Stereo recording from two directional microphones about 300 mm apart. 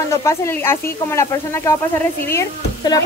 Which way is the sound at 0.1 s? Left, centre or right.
Centre.